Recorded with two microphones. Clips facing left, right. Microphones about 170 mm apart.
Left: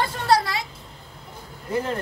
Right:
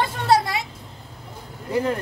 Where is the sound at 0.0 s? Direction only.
20° right (ahead or behind).